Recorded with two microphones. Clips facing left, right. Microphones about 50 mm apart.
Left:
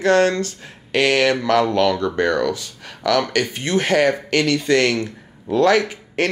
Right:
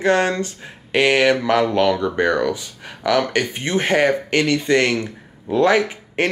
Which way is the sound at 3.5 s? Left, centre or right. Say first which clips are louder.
Left 1 dB; right.